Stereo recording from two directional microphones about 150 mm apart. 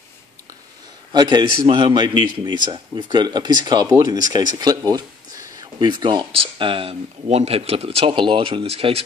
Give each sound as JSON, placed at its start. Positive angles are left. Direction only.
{"t": 1.1, "sound": "speech", "side_deg": -30}